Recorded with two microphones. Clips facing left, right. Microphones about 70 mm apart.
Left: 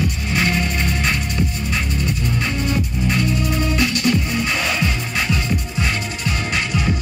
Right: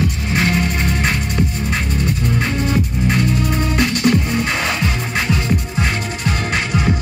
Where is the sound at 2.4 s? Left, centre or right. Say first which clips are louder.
Right 3 dB; right.